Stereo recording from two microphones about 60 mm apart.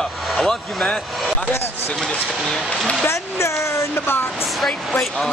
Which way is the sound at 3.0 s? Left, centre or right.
Left.